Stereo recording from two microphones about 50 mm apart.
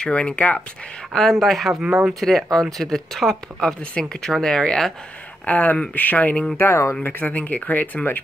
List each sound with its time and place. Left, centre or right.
0.1 s speech: left
1.1 s speech: centre
1.7 s speech: centre
2.1 s speech: centre
5.4 s speech: left
6.5 s speech: left
7.0 s speech: left